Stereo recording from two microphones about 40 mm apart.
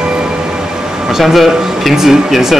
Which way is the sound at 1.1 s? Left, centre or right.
Centre.